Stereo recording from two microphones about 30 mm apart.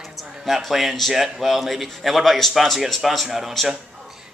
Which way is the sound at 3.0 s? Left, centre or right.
Centre.